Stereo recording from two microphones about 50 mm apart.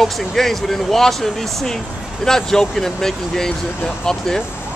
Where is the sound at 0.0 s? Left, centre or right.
Centre.